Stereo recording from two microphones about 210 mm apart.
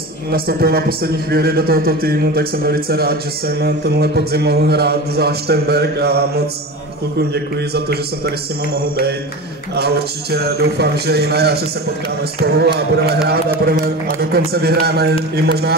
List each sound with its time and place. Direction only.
0.3 s a man's voice: 45° right (ahead or behind)
9.8 s a man's voice: 50° right (ahead or behind)